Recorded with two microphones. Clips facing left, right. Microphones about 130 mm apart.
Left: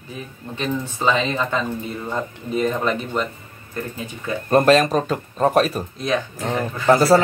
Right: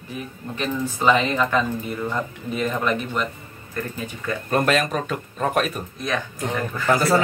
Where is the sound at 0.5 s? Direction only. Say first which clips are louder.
Left 1 dB; 25° left (ahead or behind).